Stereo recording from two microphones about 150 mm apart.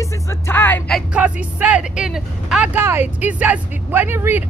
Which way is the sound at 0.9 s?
10° right (ahead or behind).